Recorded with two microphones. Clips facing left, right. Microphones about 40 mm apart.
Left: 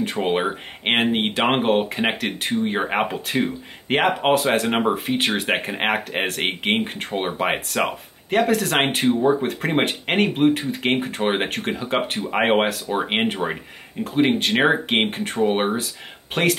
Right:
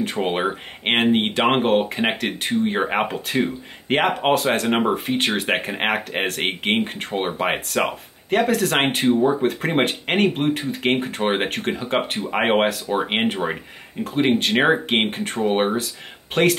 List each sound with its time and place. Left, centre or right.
0.0 s speech: centre